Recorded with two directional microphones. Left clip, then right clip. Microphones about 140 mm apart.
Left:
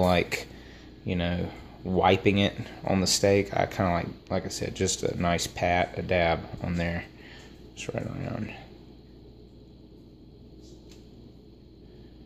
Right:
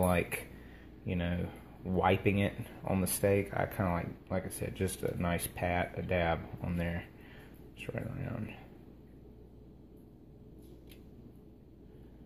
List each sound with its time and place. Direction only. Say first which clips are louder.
0.0 s speech: left 7 dB; 20° left (ahead or behind)